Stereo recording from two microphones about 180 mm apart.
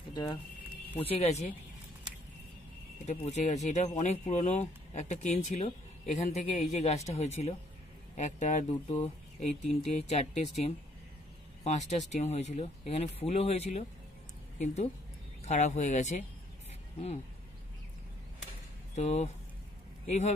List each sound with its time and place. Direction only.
0.1 s speech: 25° left (ahead or behind)
3.1 s speech: 40° left (ahead or behind)
18.9 s speech: 40° left (ahead or behind)